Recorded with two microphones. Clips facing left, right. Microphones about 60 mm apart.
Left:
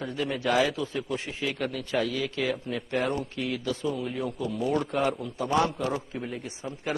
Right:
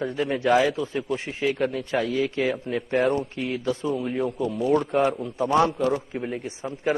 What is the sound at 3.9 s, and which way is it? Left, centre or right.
A man's voice, centre.